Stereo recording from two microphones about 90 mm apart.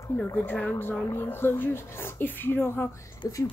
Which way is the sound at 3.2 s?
40° left (ahead or behind).